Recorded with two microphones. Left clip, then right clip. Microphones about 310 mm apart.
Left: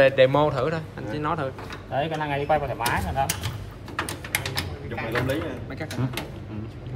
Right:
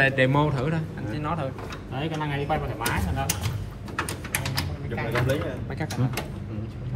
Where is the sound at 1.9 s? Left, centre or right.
Left.